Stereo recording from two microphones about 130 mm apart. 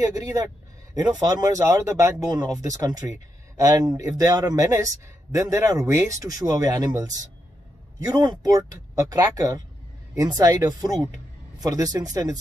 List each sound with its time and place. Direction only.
0.0 s speech: 25° right (ahead or behind)